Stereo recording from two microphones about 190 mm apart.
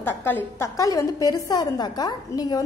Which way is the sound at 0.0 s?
10° left (ahead or behind).